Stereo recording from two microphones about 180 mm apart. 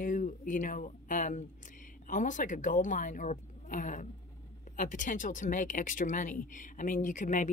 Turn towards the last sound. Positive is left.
turn(degrees=45)  # may be behind; listen again after turning